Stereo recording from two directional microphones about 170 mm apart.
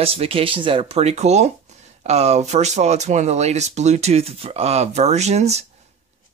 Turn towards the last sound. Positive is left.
turn(degrees=-40)  # may be behind; listen again after turning